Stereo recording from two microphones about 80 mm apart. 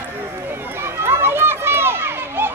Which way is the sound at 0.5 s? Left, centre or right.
Right.